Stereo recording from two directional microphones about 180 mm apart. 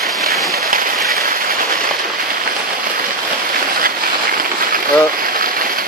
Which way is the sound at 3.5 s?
50° right (ahead or behind).